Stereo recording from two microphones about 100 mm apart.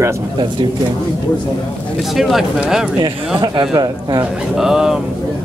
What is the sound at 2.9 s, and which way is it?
A man's voice, 50° right (ahead or behind).